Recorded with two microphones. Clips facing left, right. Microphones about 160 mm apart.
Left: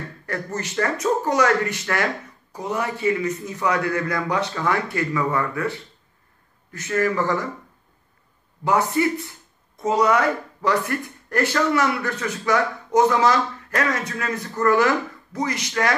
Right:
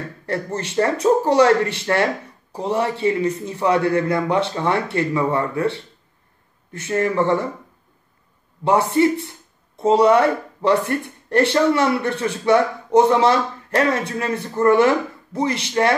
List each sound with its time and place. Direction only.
0.3 s speech: 30° right (ahead or behind)
8.6 s speech: 25° right (ahead or behind)